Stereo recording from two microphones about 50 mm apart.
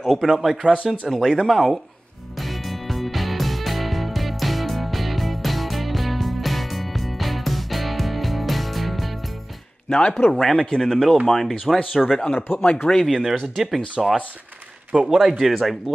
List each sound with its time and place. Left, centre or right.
0.0 s a man's voice: centre
2.3 s music: centre
9.8 s a man's voice: centre
12.3 s speech: left
13.0 s speech: centre
14.9 s a man's voice: centre
15.1 s speech: centre